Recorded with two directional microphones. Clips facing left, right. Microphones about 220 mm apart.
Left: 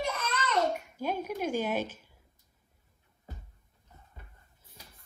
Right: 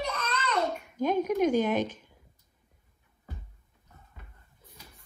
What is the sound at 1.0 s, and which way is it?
A woman's voice, 10° left (ahead or behind).